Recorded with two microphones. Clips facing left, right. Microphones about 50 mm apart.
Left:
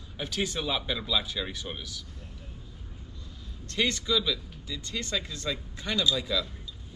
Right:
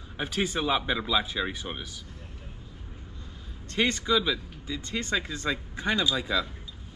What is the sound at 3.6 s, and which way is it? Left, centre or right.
Speech, right.